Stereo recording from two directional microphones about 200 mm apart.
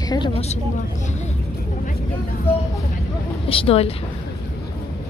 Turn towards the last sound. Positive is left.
turn(degrees=30)  # may be behind; listen again after turning